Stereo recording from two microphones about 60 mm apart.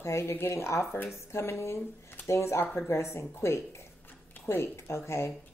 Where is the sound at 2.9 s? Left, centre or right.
Left.